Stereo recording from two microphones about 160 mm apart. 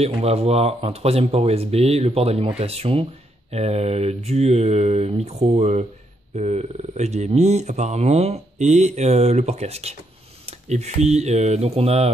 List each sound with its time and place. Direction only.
0.0 s speech: 40° right (ahead or behind)